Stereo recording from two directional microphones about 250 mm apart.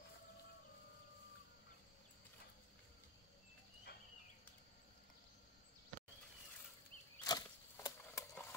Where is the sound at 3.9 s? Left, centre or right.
Left.